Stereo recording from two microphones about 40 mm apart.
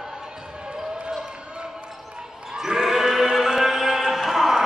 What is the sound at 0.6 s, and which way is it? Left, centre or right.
Basketball bounce, centre.